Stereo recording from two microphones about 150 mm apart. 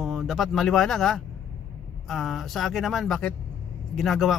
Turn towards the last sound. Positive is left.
turn(degrees=0)  # may be behind; listen again after turning